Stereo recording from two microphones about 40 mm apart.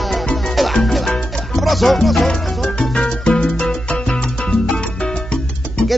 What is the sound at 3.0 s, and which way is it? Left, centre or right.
Music, left.